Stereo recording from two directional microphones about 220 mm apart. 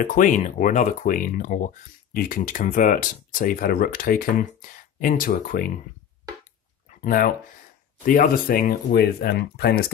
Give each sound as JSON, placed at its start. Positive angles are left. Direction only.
{"t": 0.0, "sound": "speech", "side_deg": 35}
{"t": 7.0, "sound": "speech", "side_deg": 40}